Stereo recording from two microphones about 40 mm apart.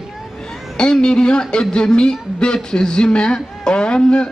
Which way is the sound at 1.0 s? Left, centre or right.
Centre.